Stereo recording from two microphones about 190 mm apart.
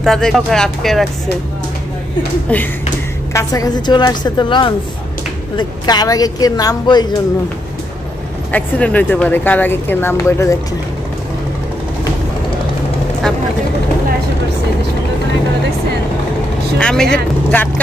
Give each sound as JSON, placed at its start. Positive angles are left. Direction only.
{"t": 0.0, "sound": "speech", "side_deg": 0}
{"t": 3.3, "sound": "a woman's voice", "side_deg": 20}
{"t": 8.5, "sound": "speech", "side_deg": 5}
{"t": 16.7, "sound": "speech", "side_deg": 5}